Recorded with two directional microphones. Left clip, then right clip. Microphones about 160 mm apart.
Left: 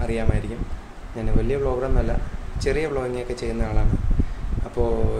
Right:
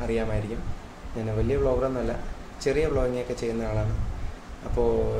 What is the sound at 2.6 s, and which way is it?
Speech, 15° left (ahead or behind).